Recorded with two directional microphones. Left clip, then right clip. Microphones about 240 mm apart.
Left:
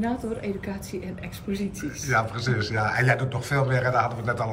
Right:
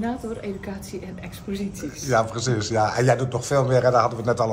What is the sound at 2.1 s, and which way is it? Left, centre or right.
Speech, centre.